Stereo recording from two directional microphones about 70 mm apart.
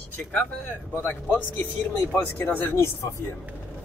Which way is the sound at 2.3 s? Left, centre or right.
Left.